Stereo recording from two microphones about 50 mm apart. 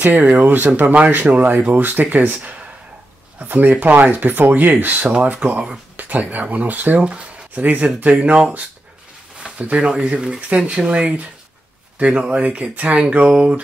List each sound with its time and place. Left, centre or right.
0.0 s speech: right